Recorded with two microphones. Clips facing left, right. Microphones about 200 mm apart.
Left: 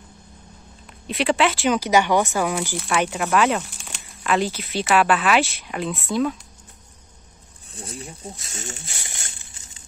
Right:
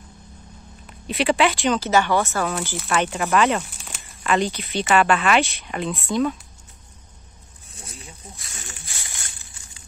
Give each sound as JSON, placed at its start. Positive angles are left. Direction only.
{"t": 0.8, "sound": "speech", "side_deg": 0}
{"t": 1.8, "sound": "speech", "side_deg": 15}
{"t": 2.5, "sound": "speech", "side_deg": 0}
{"t": 7.7, "sound": "speech", "side_deg": 30}